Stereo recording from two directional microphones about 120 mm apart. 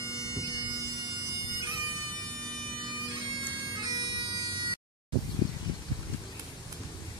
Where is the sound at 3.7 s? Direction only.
35° right (ahead or behind).